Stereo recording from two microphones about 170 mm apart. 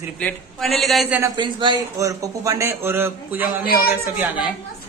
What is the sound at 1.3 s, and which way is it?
A man's voice, 25° right (ahead or behind).